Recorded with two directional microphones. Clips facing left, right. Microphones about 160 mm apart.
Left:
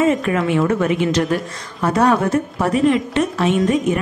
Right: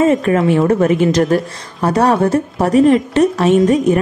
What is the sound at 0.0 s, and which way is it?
A woman's voice, 40° right (ahead or behind).